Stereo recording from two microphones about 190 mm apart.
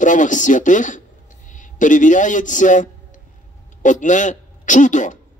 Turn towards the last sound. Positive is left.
turn(degrees=40)  # may be behind; listen again after turning